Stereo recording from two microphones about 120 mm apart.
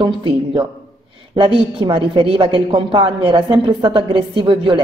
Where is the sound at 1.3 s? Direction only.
45° right (ahead or behind).